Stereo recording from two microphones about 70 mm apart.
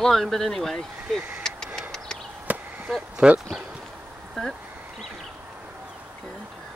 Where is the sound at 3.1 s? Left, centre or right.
Centre.